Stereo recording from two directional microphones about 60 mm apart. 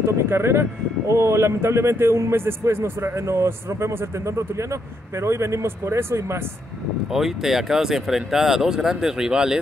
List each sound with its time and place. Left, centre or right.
0.0 s speech: right
5.2 s speech: right
7.1 s speech: centre